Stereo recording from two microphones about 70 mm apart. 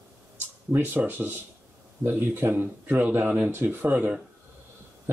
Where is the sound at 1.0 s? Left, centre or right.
Right.